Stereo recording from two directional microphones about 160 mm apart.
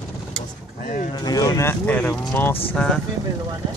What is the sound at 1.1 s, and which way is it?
Speech, 25° left (ahead or behind).